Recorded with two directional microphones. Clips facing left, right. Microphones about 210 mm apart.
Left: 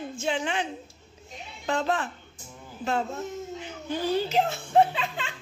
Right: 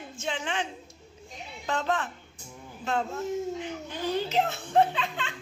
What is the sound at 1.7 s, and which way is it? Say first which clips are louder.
Speech: left 2 dB; 35° left (ahead or behind).